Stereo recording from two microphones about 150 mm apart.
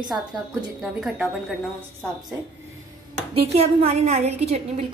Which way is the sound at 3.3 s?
40° right (ahead or behind).